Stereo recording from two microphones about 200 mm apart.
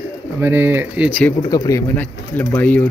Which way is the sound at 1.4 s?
20° left (ahead or behind).